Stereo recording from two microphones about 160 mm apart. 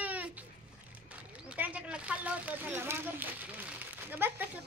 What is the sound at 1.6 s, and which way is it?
Speech, 5° right (ahead or behind).